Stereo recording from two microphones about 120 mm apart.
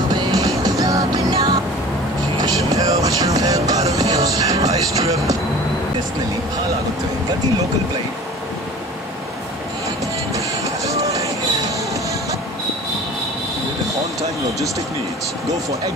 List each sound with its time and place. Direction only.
0.1 s music: 35° right (ahead or behind)
10.3 s music: 25° right (ahead or behind)